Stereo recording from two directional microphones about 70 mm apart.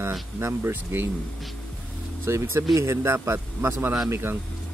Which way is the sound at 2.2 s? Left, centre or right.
Right.